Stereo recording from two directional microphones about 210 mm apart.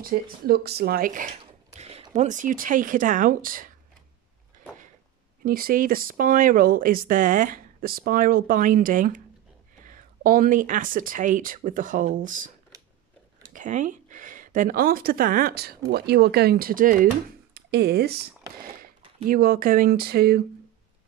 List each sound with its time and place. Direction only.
0.0 s speech: 45° right (ahead or behind)
1.4 s speech: 30° right (ahead or behind)
5.4 s speech: 45° right (ahead or behind)
13.5 s speech: 35° right (ahead or behind)
17.6 s speech: 50° right (ahead or behind)
19.2 s speech: 45° right (ahead or behind)